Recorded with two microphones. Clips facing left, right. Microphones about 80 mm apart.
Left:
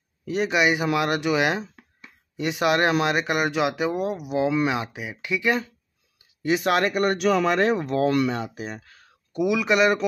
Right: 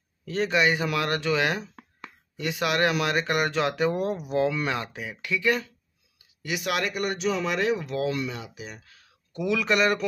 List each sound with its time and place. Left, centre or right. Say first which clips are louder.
0.2 s speech: left 2 dB; centre
3.3 s speech: left 2 dB; centre
6.4 s speech: left 7 dB; left
7.5 s speech: left 4 dB; left
8.1 s speech: left 8 dB; left
9.3 s speech: left 3 dB; centre